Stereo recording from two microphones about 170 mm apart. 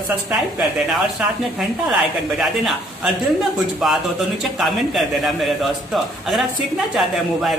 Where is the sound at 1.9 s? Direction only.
Centre (ahead or behind).